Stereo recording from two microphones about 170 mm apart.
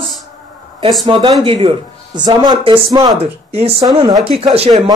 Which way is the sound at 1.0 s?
30° right (ahead or behind).